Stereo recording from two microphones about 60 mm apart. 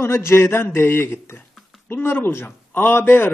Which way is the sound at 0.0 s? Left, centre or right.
Left.